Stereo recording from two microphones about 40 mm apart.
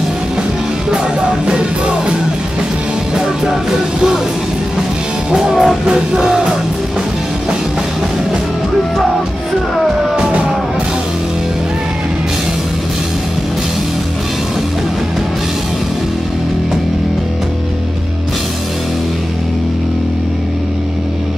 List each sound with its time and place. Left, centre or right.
1.4 s music: right
3.2 s music: centre
5.3 s music: centre
10.1 s music: right